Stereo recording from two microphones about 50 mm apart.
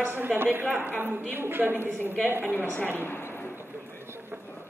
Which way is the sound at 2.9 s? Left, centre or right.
Left.